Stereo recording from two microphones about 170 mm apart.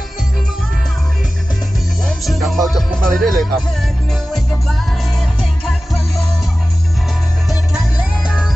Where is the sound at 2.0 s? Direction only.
Centre (ahead or behind).